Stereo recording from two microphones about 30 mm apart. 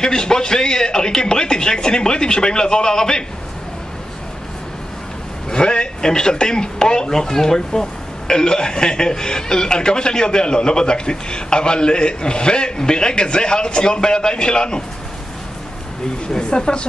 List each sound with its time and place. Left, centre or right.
0.0 s speech: left
5.5 s speech: left
16.3 s speech: left